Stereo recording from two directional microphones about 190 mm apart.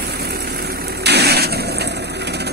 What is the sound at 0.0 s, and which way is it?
Vehicle, 55° right (ahead or behind).